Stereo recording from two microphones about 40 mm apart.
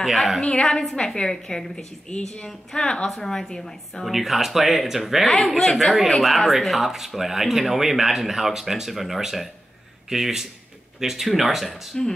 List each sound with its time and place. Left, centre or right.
0.1 s speech: centre
0.4 s a woman's voice: centre
2.0 s a woman's voice: left
4.0 s speech: centre
5.7 s a woman's voice: centre